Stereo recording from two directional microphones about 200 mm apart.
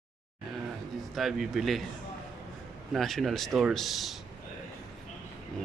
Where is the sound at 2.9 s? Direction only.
Centre (ahead or behind).